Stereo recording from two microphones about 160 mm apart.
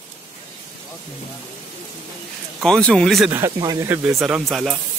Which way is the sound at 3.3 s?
15° right (ahead or behind).